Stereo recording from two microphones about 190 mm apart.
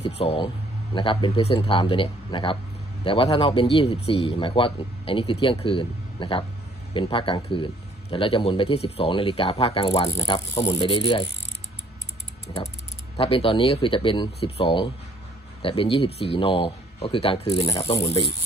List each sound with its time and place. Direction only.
0.2 s a man's voice: 30° left (ahead or behind)
13.1 s a man's voice: 30° left (ahead or behind)